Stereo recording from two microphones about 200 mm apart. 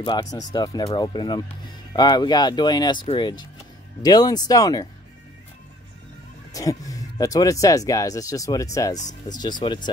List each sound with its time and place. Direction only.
0.0 s speech: 20° left (ahead or behind)
6.5 s speech: 15° left (ahead or behind)